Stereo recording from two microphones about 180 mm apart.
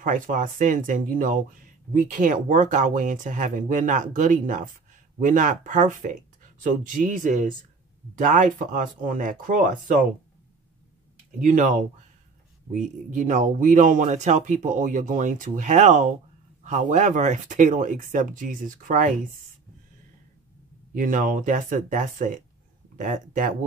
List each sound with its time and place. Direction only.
0.0 s speech: 45° right (ahead or behind)
11.4 s speech: 45° right (ahead or behind)
20.9 s speech: 50° right (ahead or behind)